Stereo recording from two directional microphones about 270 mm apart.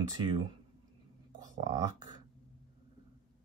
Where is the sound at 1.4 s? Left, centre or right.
Centre.